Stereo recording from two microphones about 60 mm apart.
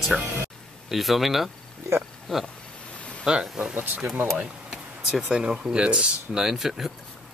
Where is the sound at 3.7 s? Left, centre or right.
Right.